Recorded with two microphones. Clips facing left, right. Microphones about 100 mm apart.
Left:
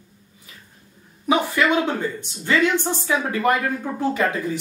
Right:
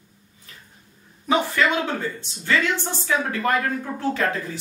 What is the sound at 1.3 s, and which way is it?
Speech, 15° left (ahead or behind).